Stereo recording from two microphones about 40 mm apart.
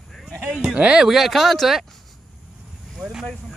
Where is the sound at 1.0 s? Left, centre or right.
Centre.